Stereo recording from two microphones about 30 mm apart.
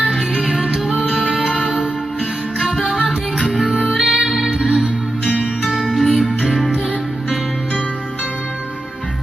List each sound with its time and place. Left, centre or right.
2.7 s music: centre
4.5 s music: right
5.9 s music: centre